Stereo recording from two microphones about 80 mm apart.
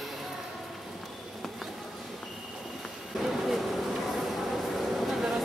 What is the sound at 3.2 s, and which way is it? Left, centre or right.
Vehicle, centre.